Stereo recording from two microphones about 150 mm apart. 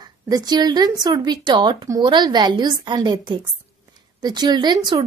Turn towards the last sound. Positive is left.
turn(degrees=-25)  # may be behind; listen again after turning